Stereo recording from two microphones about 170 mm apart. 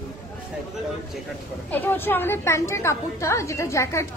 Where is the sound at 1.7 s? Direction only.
10° left (ahead or behind).